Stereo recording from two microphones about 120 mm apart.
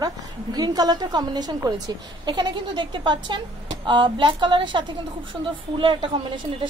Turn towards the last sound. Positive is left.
turn(degrees=-45)  # may be behind; listen again after turning